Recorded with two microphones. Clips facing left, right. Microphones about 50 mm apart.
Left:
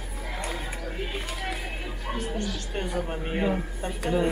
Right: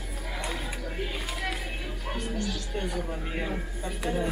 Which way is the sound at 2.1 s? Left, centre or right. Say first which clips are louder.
Left 2 dB; left.